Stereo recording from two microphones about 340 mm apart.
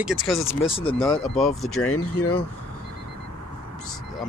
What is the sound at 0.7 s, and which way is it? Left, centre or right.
Speech, centre.